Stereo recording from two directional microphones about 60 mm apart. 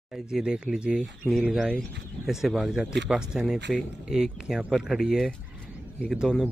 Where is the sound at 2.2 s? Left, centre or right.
Centre.